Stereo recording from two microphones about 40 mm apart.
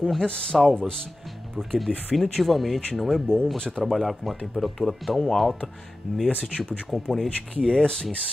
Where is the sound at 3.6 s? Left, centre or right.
Centre.